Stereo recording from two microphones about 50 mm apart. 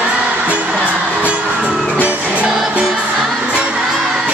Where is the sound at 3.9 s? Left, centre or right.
Centre.